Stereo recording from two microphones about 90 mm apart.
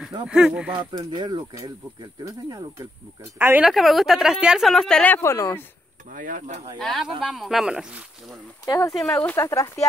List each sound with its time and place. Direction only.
0.3 s speech: 10° right (ahead or behind)
0.7 s speech: 55° right (ahead or behind)
3.3 s speech: 20° right (ahead or behind)
3.6 s a woman's voice: centre (ahead or behind)
4.7 s speech: 10° left (ahead or behind)
5.1 s speech: 30° left (ahead or behind)
6.8 s a woman's voice: centre (ahead or behind)
8.9 s speech: 10° left (ahead or behind)
9.3 s speech: 35° left (ahead or behind)